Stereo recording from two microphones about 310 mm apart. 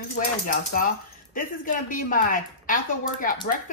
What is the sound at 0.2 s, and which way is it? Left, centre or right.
Speech, left.